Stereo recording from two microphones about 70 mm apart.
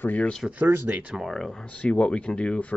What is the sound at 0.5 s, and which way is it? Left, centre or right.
Speech, right.